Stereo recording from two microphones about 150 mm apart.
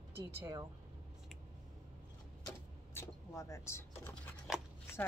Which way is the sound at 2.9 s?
20° left (ahead or behind).